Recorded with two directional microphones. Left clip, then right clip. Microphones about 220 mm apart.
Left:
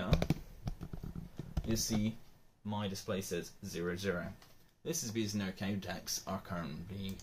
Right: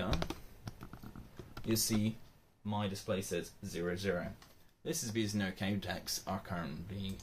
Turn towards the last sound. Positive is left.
turn(degrees=5)  # may be behind; listen again after turning